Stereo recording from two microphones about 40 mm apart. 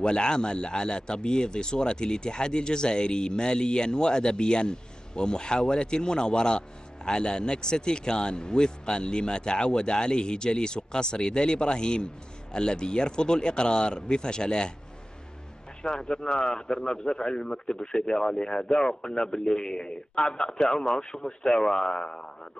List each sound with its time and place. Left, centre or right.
0.0 s speech: left
15.8 s speech: centre